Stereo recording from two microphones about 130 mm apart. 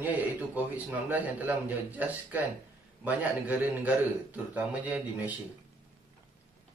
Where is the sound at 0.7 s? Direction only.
10° right (ahead or behind).